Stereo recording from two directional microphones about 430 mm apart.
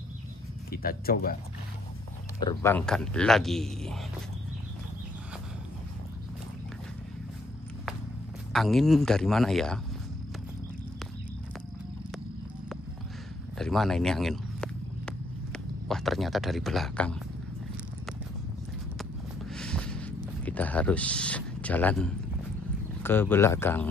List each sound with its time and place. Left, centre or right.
0.7 s speech: left
2.4 s speech: centre
8.5 s speech: centre
13.6 s walk: centre
19.5 s a sound: centre
23.0 s speech: centre